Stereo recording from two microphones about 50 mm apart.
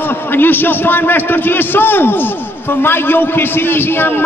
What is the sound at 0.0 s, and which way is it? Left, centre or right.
A man's voice, left.